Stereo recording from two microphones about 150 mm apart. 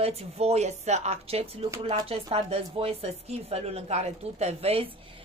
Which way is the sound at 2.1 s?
40° right (ahead or behind).